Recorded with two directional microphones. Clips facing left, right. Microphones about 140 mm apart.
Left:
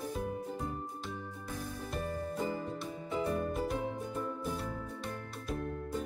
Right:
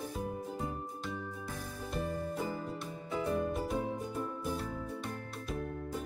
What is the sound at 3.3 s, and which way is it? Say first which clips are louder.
Music: right 1 dB; centre (ahead or behind).